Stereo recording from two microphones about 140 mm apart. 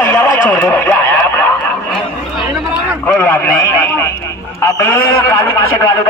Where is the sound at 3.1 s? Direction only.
15° left (ahead or behind).